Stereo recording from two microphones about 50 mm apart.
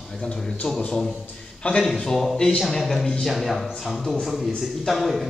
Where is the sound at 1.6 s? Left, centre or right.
Left.